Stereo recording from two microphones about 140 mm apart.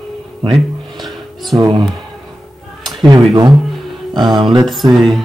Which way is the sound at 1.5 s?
30° right (ahead or behind).